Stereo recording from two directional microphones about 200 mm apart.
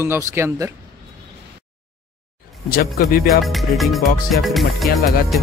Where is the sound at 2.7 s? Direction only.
50° left (ahead or behind).